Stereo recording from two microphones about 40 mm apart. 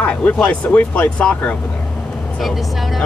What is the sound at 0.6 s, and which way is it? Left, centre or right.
Speech, left.